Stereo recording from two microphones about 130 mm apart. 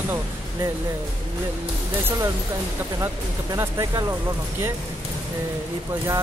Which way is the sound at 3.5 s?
25° right (ahead or behind).